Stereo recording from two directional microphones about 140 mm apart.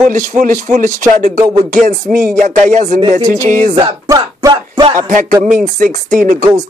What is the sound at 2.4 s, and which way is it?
Speech, 60° right (ahead or behind).